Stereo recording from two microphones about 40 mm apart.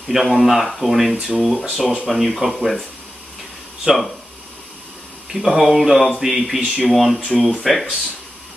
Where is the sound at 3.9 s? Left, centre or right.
Centre.